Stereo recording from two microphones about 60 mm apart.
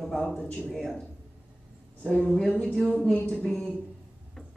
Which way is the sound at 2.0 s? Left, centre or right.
Centre.